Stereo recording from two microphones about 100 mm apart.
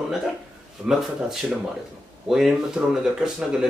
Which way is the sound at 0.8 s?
20° right (ahead or behind).